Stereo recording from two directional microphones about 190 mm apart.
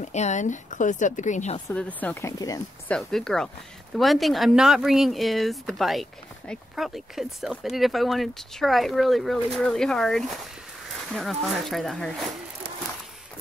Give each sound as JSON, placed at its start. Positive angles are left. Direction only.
{"t": 0.0, "sound": "speech", "side_deg": 40}
{"t": 1.7, "sound": "speech", "side_deg": 10}
{"t": 2.3, "sound": "speech", "side_deg": 20}
{"t": 2.9, "sound": "speech", "side_deg": 0}